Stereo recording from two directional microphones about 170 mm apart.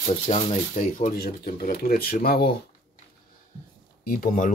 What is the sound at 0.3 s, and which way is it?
Speech, 45° left (ahead or behind).